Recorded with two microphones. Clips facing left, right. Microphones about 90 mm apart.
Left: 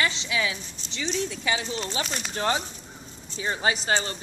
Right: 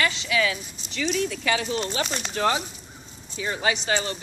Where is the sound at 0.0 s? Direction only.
25° left (ahead or behind).